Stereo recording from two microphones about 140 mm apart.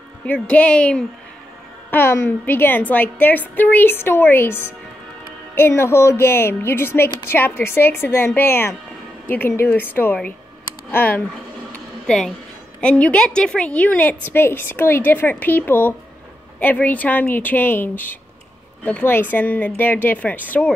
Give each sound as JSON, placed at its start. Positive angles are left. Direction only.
{"t": 0.3, "sound": "a woman's voice", "side_deg": 10}
{"t": 11.7, "sound": "a sound", "side_deg": 5}
{"t": 12.8, "sound": "a woman's voice", "side_deg": 10}